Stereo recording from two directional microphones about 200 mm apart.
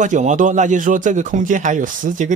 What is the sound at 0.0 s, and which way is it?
A man's voice, 40° right (ahead or behind).